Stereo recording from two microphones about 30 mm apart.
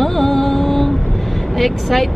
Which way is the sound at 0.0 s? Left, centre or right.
Centre.